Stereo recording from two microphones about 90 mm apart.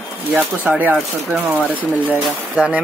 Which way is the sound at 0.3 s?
20° right (ahead or behind).